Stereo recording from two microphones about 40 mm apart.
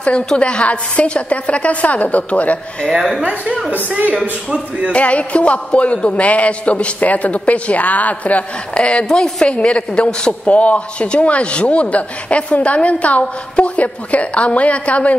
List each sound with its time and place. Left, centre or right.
0.4 s a man's voice: left
2.9 s a woman's voice: centre
4.5 s a sound: right
4.9 s a man's voice: left
9.1 s a woman's voice: centre
9.5 s a man's voice: left